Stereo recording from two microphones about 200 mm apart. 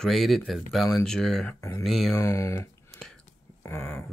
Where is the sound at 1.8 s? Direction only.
Centre (ahead or behind).